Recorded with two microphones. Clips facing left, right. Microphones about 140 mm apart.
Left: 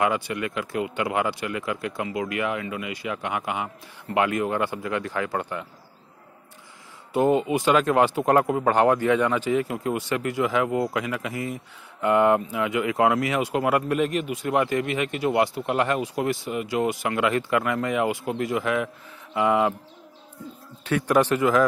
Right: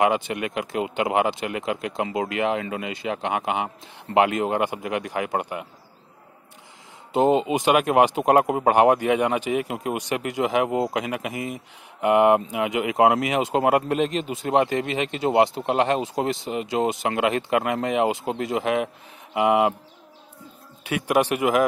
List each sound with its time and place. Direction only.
0.0 s speech: 20° right (ahead or behind)
7.2 s speech: 20° right (ahead or behind)
20.8 s a man's voice: 10° right (ahead or behind)